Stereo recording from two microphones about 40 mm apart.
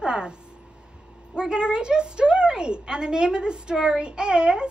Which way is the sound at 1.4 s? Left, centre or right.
Right.